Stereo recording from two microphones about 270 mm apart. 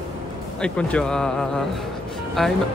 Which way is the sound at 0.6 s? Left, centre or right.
Centre.